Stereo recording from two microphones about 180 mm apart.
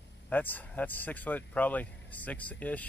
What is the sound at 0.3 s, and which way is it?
Speech, 10° left (ahead or behind).